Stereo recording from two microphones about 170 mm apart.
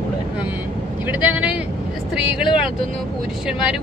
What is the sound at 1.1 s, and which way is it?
Speech, 5° right (ahead or behind).